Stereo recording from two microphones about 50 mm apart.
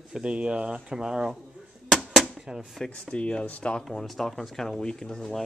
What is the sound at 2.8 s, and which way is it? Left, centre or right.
Speech, centre.